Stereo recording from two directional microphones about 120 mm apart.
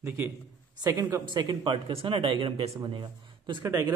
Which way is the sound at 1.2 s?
35° right (ahead or behind).